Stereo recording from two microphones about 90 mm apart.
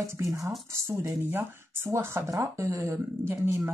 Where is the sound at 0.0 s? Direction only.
30° right (ahead or behind).